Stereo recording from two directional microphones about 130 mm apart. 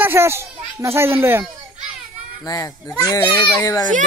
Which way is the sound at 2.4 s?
30° left (ahead or behind).